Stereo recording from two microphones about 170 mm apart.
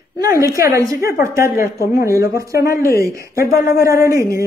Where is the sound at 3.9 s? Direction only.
20° right (ahead or behind).